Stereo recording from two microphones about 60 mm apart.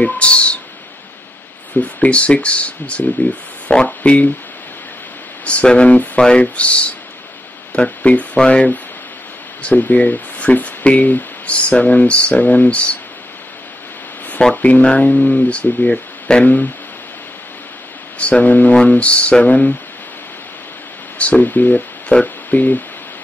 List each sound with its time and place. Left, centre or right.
0.0 s a sound: left
1.8 s speech: left
5.4 s speech: left
9.6 s speech: left
14.4 s speech: left
18.2 s speech: left
21.2 s speech: left